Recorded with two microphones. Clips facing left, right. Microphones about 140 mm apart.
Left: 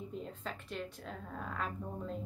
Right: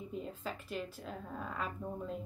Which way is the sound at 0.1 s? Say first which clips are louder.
Right 1 dB; 5° right (ahead or behind).